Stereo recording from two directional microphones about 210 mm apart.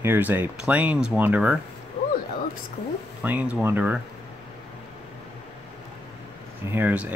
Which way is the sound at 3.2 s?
5° right (ahead or behind).